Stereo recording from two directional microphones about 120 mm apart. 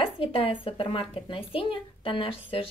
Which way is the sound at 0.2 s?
50° left (ahead or behind).